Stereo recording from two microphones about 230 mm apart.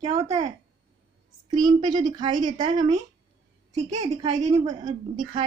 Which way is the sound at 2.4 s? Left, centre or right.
Right.